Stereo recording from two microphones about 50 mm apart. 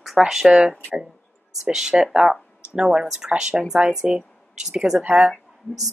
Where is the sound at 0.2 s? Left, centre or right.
Centre.